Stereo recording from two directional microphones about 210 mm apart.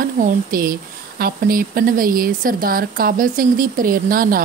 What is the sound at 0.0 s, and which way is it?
Speech, 45° right (ahead or behind).